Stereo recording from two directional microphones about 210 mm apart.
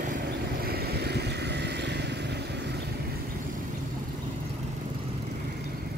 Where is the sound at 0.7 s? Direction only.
50° right (ahead or behind).